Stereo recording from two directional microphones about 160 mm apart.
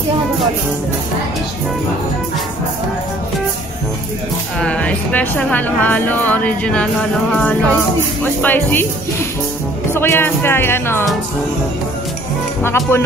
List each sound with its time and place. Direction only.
4.6 s speech: 5° left (ahead or behind)
9.9 s speech: 15° left (ahead or behind)
12.6 s speech: 15° left (ahead or behind)